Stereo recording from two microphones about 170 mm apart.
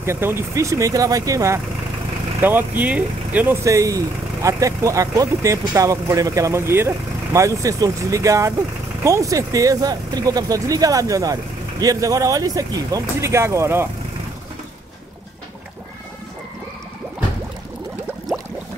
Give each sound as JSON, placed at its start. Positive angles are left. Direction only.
{"t": 0.0, "sound": "speech", "side_deg": -15}